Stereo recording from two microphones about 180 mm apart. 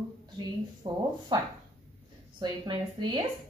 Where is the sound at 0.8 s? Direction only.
25° right (ahead or behind).